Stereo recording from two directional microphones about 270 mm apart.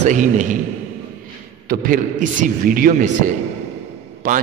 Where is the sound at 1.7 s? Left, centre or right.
Right.